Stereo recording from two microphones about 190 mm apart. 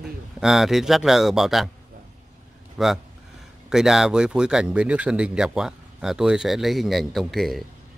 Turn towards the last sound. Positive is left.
turn(degrees=0)  # may be behind; listen again after turning